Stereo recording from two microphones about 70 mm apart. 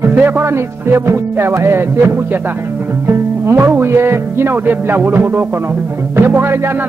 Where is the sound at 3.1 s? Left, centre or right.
Right.